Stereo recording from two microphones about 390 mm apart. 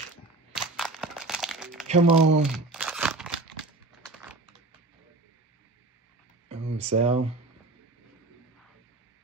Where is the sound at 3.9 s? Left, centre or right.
Centre.